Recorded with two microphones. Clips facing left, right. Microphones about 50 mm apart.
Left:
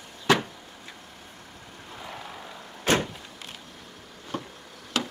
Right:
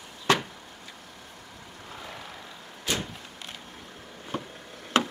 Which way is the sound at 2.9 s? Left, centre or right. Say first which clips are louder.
Left 7 dB; left.